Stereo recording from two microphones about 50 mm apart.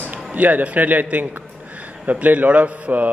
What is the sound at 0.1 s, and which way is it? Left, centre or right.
A man's voice, right.